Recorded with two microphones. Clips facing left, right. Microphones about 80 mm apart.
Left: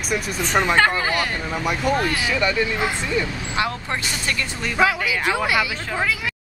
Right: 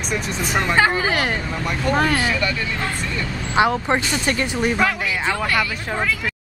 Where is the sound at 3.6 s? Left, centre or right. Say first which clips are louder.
Right 7 dB; right.